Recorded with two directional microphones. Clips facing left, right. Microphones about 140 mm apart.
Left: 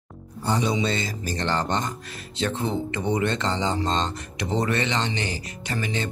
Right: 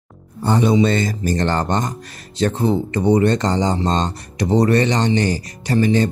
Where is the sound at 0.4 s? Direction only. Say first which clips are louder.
Right 8 dB; 55° right (ahead or behind).